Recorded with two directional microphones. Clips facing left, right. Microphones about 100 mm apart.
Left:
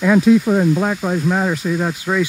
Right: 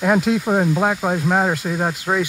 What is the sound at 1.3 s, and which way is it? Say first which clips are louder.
Speech: left 1 dB; 35° right (ahead or behind).